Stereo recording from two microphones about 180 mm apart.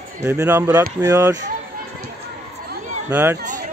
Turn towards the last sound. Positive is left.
turn(degrees=-10)  # may be behind; listen again after turning